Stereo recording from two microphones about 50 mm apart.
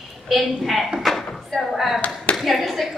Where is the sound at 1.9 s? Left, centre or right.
Left.